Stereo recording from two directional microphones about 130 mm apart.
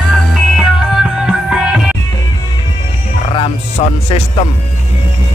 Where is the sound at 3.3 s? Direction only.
45° left (ahead or behind).